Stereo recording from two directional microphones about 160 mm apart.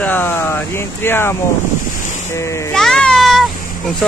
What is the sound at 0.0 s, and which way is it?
A child's voice, 10° left (ahead or behind).